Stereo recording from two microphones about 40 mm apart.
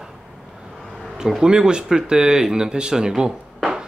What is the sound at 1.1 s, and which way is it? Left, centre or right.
Speech, centre.